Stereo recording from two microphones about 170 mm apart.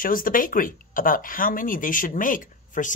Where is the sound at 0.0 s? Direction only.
55° left (ahead or behind).